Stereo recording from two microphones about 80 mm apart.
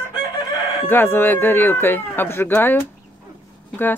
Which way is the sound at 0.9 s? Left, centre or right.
Left.